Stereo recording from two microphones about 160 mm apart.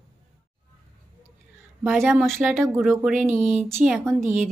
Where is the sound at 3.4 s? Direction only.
15° right (ahead or behind).